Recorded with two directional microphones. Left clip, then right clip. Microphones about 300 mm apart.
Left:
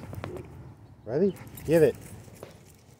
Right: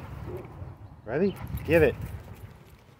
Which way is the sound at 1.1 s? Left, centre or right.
Centre.